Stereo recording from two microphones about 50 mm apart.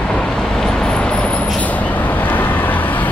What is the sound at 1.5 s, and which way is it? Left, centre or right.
Vehicle, left.